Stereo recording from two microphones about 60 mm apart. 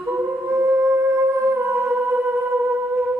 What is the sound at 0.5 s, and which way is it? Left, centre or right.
Music, right.